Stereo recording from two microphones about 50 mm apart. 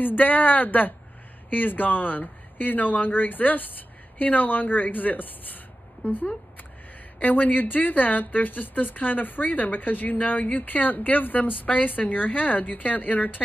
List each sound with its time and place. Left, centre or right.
0.0 s speech: left